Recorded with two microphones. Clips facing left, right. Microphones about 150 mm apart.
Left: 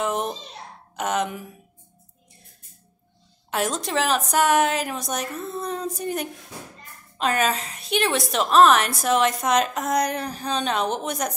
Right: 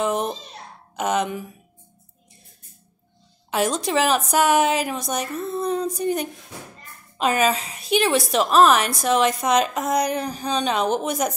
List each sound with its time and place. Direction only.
0.0 s a child's voice: centre (ahead or behind)
3.4 s a woman's voice: centre (ahead or behind)